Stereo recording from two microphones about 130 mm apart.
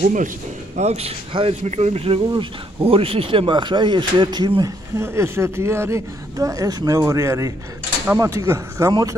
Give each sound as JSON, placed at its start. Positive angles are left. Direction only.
{"t": 0.0, "sound": "speech", "side_deg": -85}
{"t": 0.7, "sound": "speech", "side_deg": -55}
{"t": 4.9, "sound": "a woman's voice", "side_deg": -20}